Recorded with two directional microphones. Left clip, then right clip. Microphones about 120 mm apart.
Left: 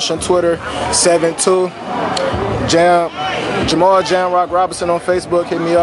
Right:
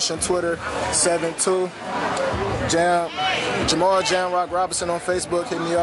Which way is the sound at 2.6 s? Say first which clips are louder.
Left 9 dB; centre (ahead or behind).